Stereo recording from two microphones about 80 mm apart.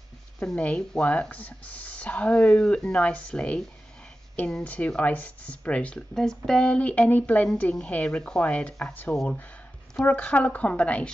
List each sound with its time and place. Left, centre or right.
0.6 s speech: centre
8.9 s speech: left